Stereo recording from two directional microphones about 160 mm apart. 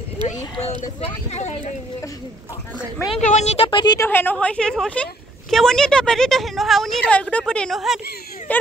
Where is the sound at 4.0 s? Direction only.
15° left (ahead or behind).